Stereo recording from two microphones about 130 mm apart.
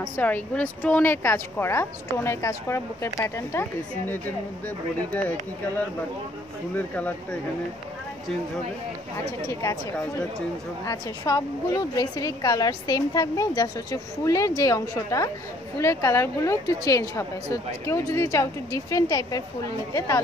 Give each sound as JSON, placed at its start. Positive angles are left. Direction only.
{"t": 0.0, "sound": "a woman's voice", "side_deg": 15}
{"t": 9.5, "sound": "a woman's voice", "side_deg": 25}
{"t": 10.9, "sound": "a woman's voice", "side_deg": 25}